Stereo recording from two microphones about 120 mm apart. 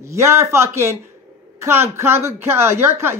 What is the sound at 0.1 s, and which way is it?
Speech, 20° right (ahead or behind).